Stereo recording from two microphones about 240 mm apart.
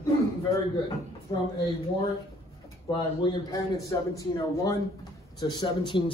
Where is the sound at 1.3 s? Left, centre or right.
Left.